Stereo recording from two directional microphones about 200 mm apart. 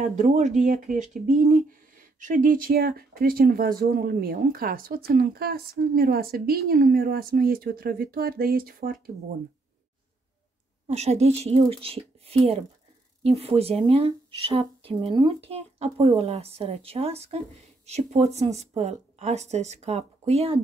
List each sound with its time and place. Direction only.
0.0 s speech: 40° right (ahead or behind)
10.9 s speech: 35° right (ahead or behind)